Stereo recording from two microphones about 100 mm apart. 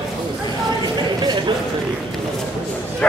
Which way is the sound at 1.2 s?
50° right (ahead or behind).